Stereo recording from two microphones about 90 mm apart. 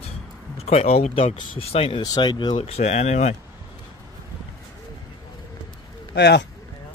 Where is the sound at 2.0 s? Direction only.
55° left (ahead or behind); by 2.8 s 75° left (ahead or behind).